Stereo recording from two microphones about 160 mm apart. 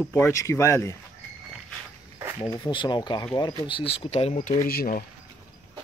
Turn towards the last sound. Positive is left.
turn(degrees=65)  # may be behind; listen again after turning